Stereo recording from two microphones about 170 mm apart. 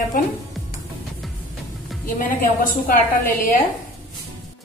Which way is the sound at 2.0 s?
55° left (ahead or behind).